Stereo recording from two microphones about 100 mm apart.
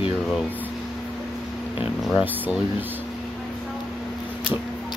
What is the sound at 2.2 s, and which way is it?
Speech, 20° right (ahead or behind).